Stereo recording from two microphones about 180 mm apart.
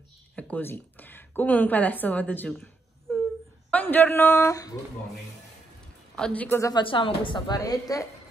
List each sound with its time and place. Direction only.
0.4 s a woman's voice: 10° left (ahead or behind)
6.1 s speech: 5° left (ahead or behind)
6.7 s a woman's voice: 25° left (ahead or behind)